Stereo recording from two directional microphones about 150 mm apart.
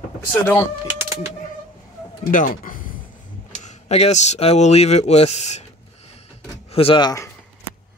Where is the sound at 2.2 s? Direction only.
60° left (ahead or behind).